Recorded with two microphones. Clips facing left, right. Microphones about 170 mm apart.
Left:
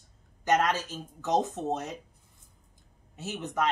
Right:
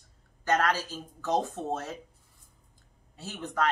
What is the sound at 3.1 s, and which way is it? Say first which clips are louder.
Speech: left 1 dB; 20° left (ahead or behind).